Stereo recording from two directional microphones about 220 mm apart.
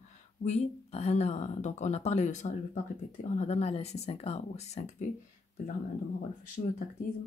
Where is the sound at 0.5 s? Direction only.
30° left (ahead or behind).